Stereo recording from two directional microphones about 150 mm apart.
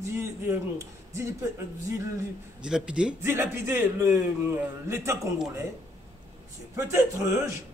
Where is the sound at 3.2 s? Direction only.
15° right (ahead or behind).